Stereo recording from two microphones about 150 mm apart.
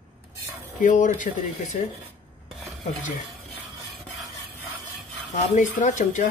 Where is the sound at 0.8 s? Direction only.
60° left (ahead or behind).